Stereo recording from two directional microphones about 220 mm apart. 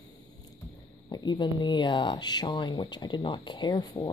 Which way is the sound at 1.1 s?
20° left (ahead or behind).